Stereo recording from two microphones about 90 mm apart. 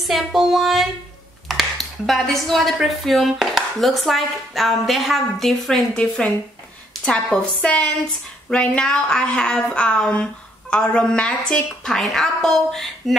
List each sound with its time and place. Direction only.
0.0 s a woman's voice: centre (ahead or behind)